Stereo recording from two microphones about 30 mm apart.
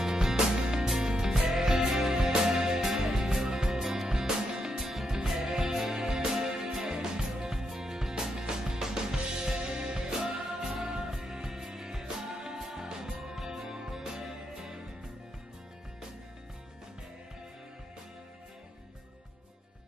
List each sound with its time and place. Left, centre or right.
0.0 s music: centre